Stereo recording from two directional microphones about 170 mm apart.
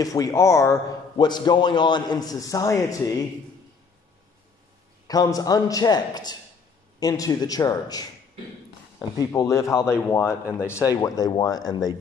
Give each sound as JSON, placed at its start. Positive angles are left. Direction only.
{"t": 0.0, "sound": "a man's voice", "side_deg": 20}
{"t": 5.0, "sound": "a man's voice", "side_deg": 20}
{"t": 9.2, "sound": "a man's voice", "side_deg": 20}